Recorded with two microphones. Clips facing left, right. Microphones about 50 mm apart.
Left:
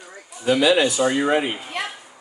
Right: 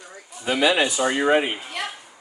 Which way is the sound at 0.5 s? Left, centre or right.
Centre.